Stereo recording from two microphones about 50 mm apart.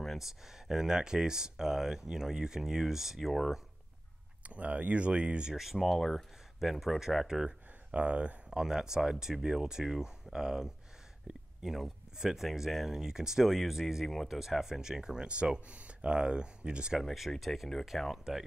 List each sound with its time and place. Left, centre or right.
0.0 s a sound: centre
0.5 s speech: centre
4.4 s speech: right
5.5 s speech: centre
7.9 s speech: right
8.5 s speech: centre
17.0 s speech: centre